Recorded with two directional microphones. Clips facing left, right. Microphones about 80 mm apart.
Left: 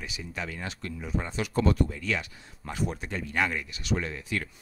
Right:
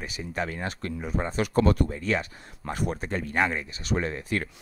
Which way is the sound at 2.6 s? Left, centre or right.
Right.